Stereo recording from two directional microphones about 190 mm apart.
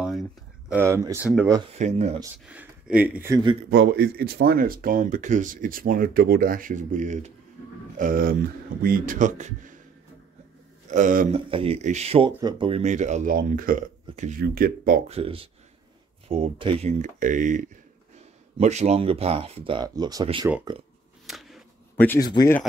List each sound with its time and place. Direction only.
0.0 s a sound: centre (ahead or behind)
0.7 s speech: 15° right (ahead or behind)
1.7 s speech: 40° right (ahead or behind)
2.5 s speech: 5° right (ahead or behind)
3.7 s speech: 65° right (ahead or behind); by 9.8 s 40° right (ahead or behind)
10.9 s a man's voice: 40° right (ahead or behind)
11.5 s speech: 30° right (ahead or behind)
14.4 s speech: 50° right (ahead or behind)
15.0 s speech: 30° right (ahead or behind)
21.3 s a sound: centre (ahead or behind)
21.9 s speech: 10° left (ahead or behind)